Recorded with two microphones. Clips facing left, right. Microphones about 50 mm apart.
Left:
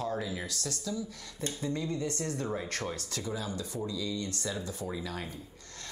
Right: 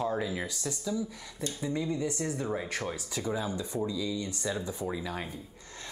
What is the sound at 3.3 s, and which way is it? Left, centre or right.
Speech, right.